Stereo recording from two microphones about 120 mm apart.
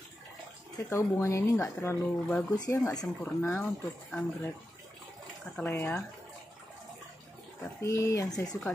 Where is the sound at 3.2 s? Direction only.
15° left (ahead or behind).